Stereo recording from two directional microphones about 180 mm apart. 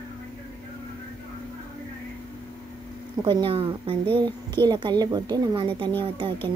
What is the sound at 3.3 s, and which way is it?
A woman's voice, 25° right (ahead or behind).